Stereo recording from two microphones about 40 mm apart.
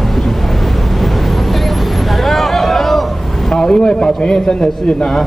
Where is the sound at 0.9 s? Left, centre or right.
Centre.